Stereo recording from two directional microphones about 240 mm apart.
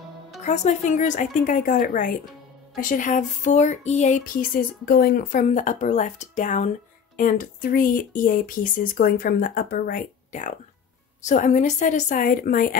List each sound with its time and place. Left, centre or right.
0.4 s speech: left